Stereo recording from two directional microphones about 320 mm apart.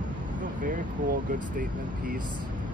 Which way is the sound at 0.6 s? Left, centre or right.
Right.